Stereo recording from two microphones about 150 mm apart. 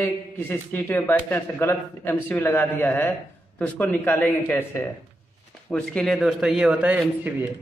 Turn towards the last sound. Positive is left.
turn(degrees=-10)  # may be behind; listen again after turning